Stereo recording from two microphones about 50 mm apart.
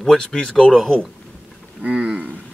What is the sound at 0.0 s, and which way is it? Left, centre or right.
Speech, centre.